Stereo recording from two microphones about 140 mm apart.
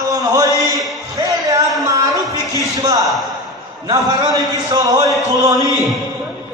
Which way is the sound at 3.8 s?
30° right (ahead or behind).